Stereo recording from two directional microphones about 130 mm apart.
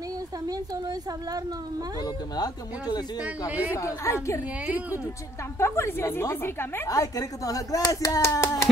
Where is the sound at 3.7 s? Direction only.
25° left (ahead or behind).